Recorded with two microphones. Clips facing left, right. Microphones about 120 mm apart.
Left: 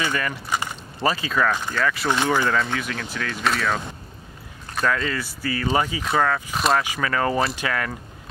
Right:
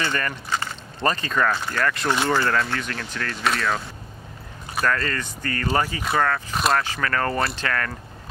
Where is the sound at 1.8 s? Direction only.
10° right (ahead or behind).